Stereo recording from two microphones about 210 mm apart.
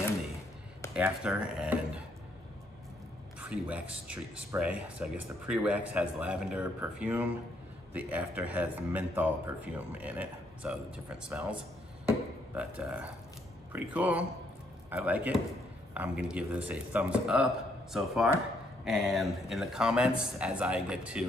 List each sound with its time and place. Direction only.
0.9 s speech: 5° right (ahead or behind)
3.3 s speech: 5° right (ahead or behind)